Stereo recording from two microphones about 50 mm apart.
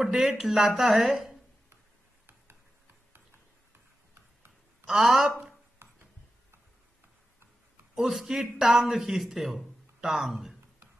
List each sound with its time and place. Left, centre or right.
0.0 s speech: centre
4.8 s a man's voice: centre
5.8 s a sound: right
7.9 s a man's voice: centre